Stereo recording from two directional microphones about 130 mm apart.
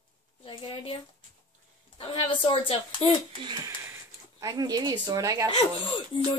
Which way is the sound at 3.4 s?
35° right (ahead or behind).